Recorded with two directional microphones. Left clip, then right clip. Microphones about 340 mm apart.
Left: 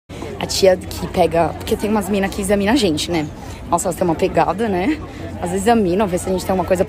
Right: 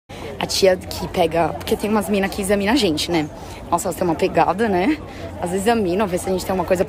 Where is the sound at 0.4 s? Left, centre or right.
Centre.